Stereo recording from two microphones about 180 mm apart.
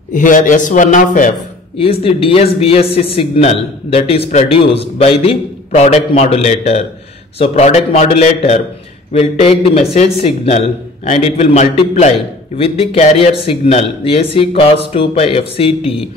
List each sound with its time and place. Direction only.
0.1 s a man's voice: 45° left (ahead or behind)
1.8 s a man's voice: 30° left (ahead or behind)